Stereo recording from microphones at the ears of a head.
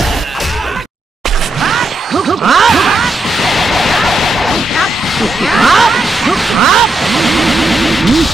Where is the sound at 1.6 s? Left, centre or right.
Right.